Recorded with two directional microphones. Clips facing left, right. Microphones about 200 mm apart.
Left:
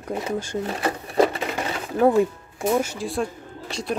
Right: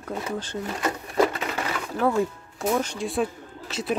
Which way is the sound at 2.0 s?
15° left (ahead or behind).